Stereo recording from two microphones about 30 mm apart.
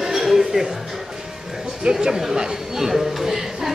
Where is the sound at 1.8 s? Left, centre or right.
Right.